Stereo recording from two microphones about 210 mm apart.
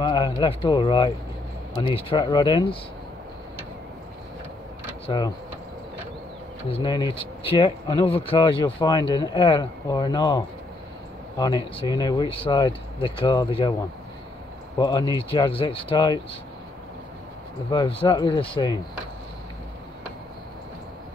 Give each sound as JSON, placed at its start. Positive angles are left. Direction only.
{"t": 0.0, "sound": "speech", "side_deg": 20}
{"t": 5.0, "sound": "speech", "side_deg": 20}
{"t": 6.7, "sound": "speech", "side_deg": 20}
{"t": 14.8, "sound": "speech", "side_deg": 20}
{"t": 17.6, "sound": "speech", "side_deg": 20}